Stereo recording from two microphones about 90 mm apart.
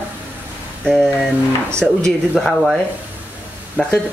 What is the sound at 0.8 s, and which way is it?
Speech, 5° left (ahead or behind).